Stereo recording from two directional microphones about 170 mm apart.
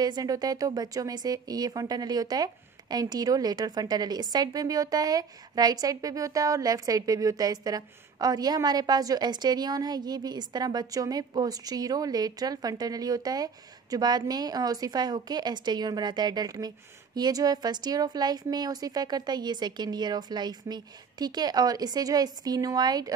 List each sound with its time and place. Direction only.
0.0 s speech: 20° right (ahead or behind)